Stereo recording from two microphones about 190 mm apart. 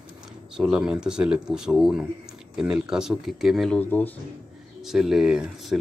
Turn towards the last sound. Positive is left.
turn(degrees=0)  # may be behind; listen again after turning